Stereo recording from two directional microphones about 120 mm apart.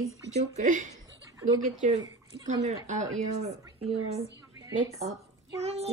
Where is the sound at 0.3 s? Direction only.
80° right.